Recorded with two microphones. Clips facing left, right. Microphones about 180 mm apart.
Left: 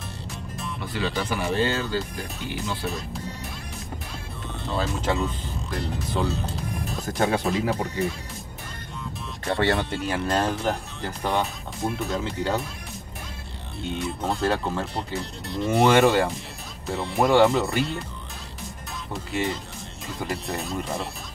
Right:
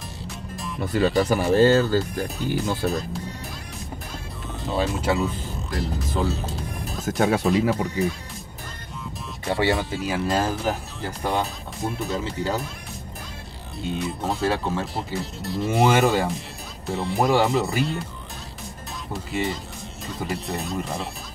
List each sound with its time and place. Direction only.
0.7 s speech: 45° right (ahead or behind)
4.7 s speech: 5° right (ahead or behind)
9.5 s speech: 5° right (ahead or behind)
13.9 s speech: centre (ahead or behind)
19.3 s speech: centre (ahead or behind)